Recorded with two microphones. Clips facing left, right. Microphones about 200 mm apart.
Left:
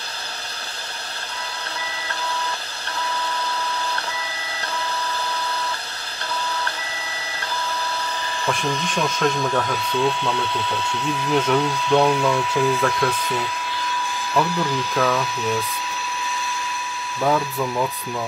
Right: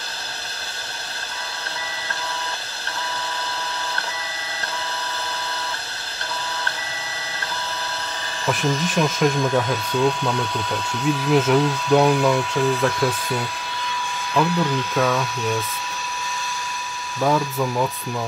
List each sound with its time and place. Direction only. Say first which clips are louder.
8.5 s speech: right 3 dB; centre (ahead or behind)
9.2 s speech: right 1 dB; 15° right (ahead or behind)
10.5 s speech: left 1 dB; 40° right (ahead or behind)
11.3 s speech: right 1 dB; 5° right (ahead or behind)
14.3 s speech: right 2 dB; centre (ahead or behind)
17.2 s speech: right 1 dB; centre (ahead or behind)